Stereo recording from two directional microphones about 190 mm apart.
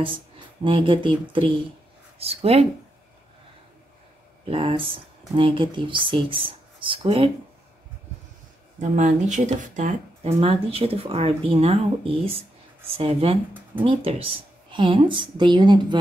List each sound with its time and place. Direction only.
0.7 s a woman's voice: 25° right (ahead or behind)
4.5 s a woman's voice: 30° right (ahead or behind)
8.7 s a woman's voice: 40° right (ahead or behind); by 16.0 s 25° right (ahead or behind)